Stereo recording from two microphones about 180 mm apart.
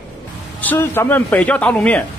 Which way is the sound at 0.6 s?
10° left (ahead or behind).